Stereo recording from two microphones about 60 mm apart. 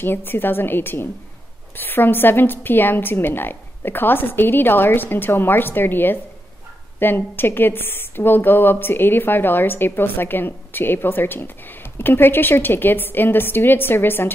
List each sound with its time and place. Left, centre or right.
0.0 s a woman's voice: left